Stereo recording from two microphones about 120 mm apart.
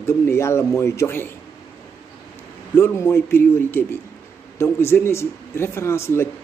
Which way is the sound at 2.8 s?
20° left (ahead or behind).